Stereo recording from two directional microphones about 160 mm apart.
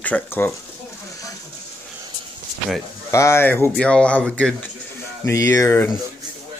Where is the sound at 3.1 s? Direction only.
15° left (ahead or behind).